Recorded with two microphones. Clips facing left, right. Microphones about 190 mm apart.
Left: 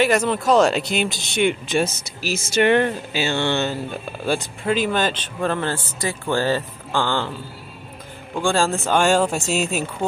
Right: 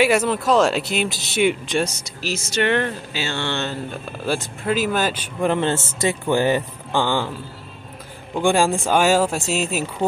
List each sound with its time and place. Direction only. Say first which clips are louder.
0.0 s speech: right 1 dB; 5° right (ahead or behind); by 3.7 s 10° left (ahead or behind)
4.3 s speech: left 1 dB; centre (ahead or behind)
8.4 s speech: right 2 dB; 15° right (ahead or behind)